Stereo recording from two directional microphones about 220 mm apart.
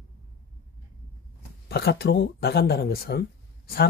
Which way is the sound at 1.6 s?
45° left (ahead or behind).